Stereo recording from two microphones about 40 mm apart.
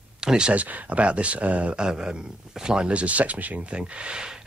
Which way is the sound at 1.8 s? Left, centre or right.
Right.